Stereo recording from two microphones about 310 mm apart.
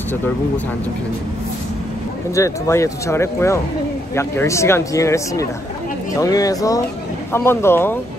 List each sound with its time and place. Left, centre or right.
2.3 s speech: centre